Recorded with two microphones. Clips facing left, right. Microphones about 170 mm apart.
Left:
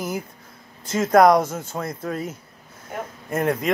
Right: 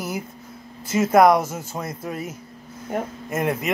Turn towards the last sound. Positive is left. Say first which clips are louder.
# left 2 dB
turn(degrees=-5)  # may be behind; listen again after turning